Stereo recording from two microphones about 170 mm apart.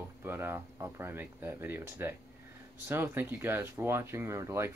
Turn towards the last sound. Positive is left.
turn(degrees=-15)  # may be behind; listen again after turning